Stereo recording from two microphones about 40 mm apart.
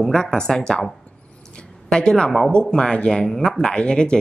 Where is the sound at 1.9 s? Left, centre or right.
Centre.